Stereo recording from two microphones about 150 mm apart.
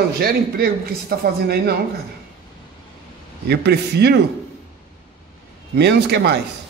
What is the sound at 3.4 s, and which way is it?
Speech, 90° right.